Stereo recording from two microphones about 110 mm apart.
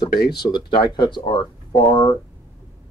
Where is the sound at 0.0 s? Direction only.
40° left (ahead or behind).